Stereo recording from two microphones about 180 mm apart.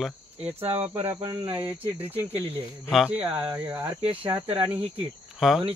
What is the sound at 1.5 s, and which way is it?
Speech, 10° right (ahead or behind).